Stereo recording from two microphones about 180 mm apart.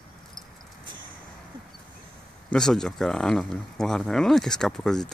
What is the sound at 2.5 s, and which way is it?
Speech, 5° left (ahead or behind).